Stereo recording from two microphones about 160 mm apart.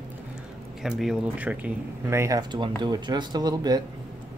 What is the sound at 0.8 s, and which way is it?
Speech, 5° right (ahead or behind).